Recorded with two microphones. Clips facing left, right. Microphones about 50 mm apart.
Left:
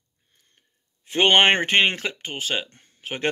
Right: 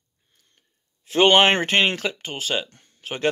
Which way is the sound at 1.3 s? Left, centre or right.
Left.